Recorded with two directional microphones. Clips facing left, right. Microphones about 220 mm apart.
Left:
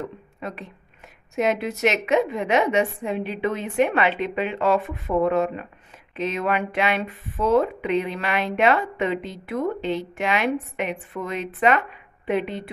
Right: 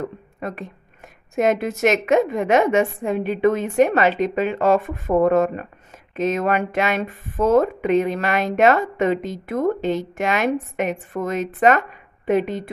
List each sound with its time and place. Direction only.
0.4 s speech: 50° right (ahead or behind)